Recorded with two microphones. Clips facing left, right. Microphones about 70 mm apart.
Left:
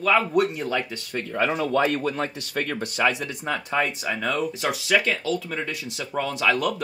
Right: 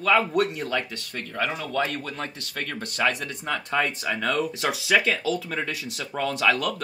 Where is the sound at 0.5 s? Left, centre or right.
Centre.